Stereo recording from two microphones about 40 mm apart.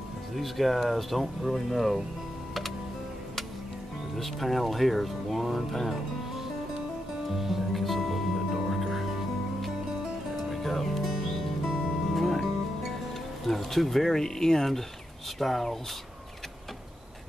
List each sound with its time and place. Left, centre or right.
0.4 s speech: centre
4.2 s speech: centre
8.5 s music: centre
10.3 s music: centre
13.5 s speech: centre